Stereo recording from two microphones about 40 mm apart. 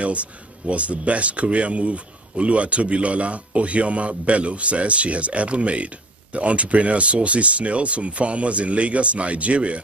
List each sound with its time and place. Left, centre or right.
0.0 s speech: right